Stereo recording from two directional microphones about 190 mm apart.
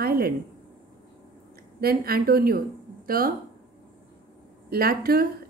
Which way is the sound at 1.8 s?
55° right (ahead or behind).